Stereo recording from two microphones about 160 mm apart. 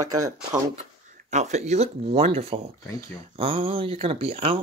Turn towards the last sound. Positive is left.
turn(degrees=-35)  # may be behind; listen again after turning